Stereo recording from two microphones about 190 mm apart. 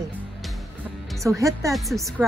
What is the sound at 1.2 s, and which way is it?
Speech, 15° right (ahead or behind).